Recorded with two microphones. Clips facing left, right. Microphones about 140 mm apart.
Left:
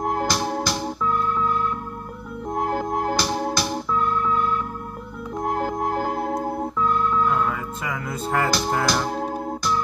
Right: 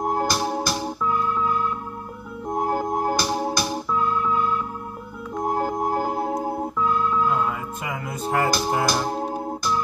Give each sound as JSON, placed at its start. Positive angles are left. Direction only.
{"t": 0.1, "sound": "organ", "side_deg": -10}
{"t": 2.6, "sound": "music", "side_deg": -15}
{"t": 5.7, "sound": "music", "side_deg": -10}